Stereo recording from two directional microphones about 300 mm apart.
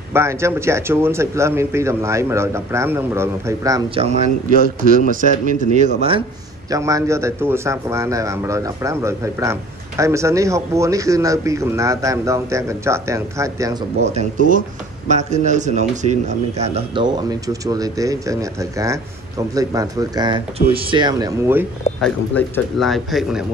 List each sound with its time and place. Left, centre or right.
0.1 s a man's voice: centre
5.4 s a man's voice: right
14.0 s a man's voice: right; by 23.4 s centre